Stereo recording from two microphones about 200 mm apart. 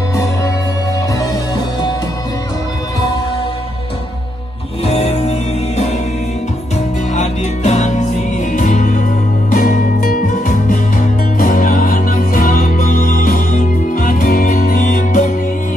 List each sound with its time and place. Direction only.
0.1 s music: 15° left (ahead or behind)
4.8 s music: 30° left (ahead or behind)
7.2 s music: 35° left (ahead or behind)